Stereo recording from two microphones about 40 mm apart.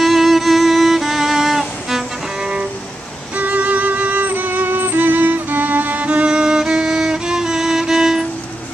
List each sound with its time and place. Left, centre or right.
0.0 s music: centre
3.3 s music: right
6.0 s music: right; by 8.3 s centre